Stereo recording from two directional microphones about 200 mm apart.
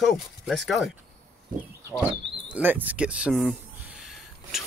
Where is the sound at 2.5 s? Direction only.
10° right (ahead or behind).